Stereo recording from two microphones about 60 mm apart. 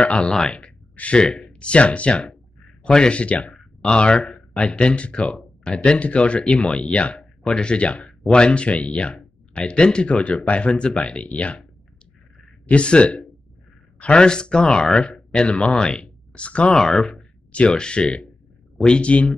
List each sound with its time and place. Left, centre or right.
0.0 s speech: centre
12.6 s speech: centre
16.7 s speech: centre
17.5 s speech: centre